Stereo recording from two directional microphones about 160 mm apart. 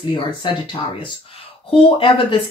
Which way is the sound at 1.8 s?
35° left (ahead or behind).